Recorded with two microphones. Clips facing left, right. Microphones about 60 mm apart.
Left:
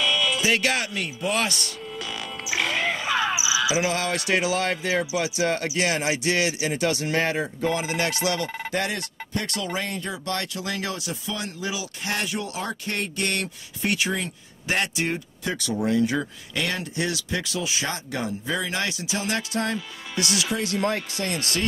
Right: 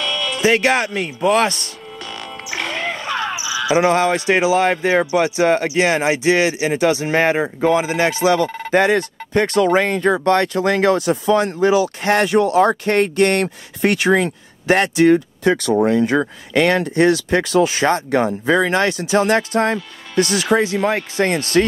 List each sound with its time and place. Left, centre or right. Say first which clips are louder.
0.0 s music: right 1 dB; centre
0.4 s speech: right 8 dB; right
2.0 s music: right 3 dB; centre
3.9 s speech: right 9 dB; right
4.8 s speech: right 9 dB; right
6.1 s speech: right 8 dB; right
7.2 s speech: right 9 dB; right
7.7 s speech: right 9 dB; right
8.5 s speech: right 4 dB; centre
8.8 s speech: right 13 dB; right
10.2 s speech: right 14 dB; right
16.2 s speech: right 11 dB; right